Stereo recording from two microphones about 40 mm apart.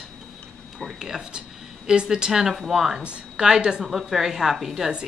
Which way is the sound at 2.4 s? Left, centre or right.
Centre.